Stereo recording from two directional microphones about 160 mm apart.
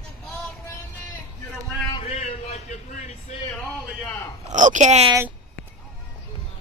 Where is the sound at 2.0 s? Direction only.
40° left (ahead or behind).